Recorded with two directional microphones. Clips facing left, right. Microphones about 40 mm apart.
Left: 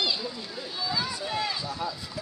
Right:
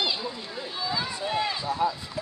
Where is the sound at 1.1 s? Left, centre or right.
Right.